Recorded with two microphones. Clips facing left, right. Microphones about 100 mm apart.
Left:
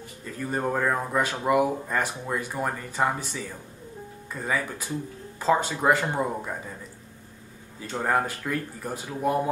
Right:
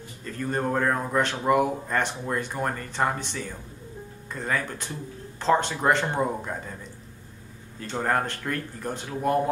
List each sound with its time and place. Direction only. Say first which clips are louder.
0.2 s speech: right 1 dB; 5° left (ahead or behind)
8.0 s speech: left 1 dB; 5° left (ahead or behind)